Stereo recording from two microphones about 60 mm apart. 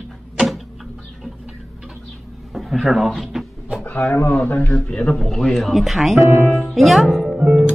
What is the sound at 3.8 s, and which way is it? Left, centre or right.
A man's voice, left.